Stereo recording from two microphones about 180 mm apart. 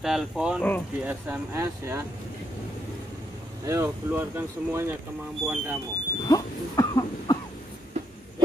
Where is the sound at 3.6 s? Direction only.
15° right (ahead or behind).